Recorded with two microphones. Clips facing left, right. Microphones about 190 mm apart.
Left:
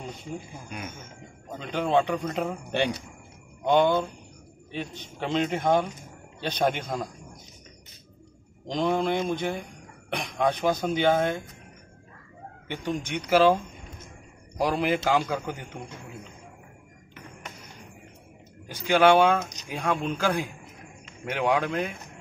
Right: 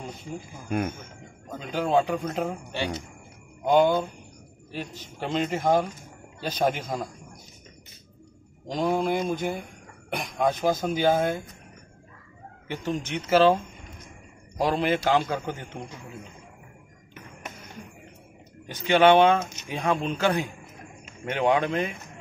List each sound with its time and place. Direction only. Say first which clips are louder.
0.7 s speech: right 14 dB; 55° right (ahead or behind)
1.6 s speech: even; centre (ahead or behind)
2.7 s speech: left 6 dB; 55° left (ahead or behind)
3.6 s speech: right 1 dB; 5° right (ahead or behind)
8.6 s speech: even; 5° right (ahead or behind)
12.6 s speech: right 1 dB; 5° right (ahead or behind)
13.3 s speech: right 1 dB; 5° left (ahead or behind)
14.6 s a man's voice: right 1 dB; 10° left (ahead or behind)
18.7 s speech: right 1 dB; 5° left (ahead or behind)